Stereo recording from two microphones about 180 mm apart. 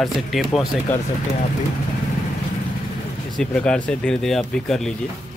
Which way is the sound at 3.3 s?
5° left (ahead or behind).